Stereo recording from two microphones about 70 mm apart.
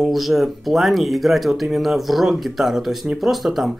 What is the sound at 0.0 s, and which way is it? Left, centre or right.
Speech, centre.